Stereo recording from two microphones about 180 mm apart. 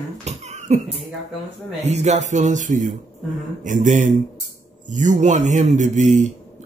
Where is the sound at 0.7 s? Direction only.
40° right (ahead or behind).